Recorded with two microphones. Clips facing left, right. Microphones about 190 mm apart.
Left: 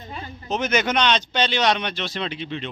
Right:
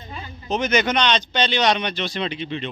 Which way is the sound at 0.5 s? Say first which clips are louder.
Right 2 dB; 5° left (ahead or behind).